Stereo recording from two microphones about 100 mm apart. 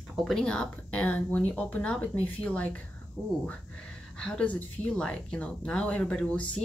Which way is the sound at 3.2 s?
20° left (ahead or behind).